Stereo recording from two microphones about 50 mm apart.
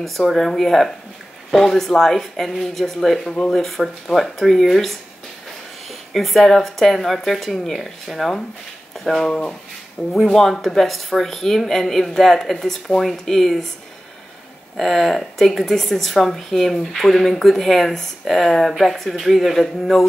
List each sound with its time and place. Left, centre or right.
0.0 s speech: centre
9.3 s speech: centre
10.2 s speech: centre
14.8 s speech: centre